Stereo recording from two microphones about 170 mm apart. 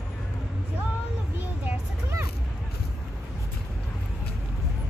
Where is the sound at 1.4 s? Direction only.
10° right (ahead or behind).